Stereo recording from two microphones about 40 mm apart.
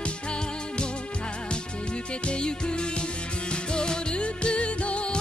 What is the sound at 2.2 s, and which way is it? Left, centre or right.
Music, left.